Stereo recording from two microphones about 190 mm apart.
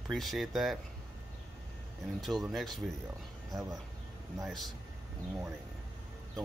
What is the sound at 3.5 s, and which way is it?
Speech, 20° right (ahead or behind).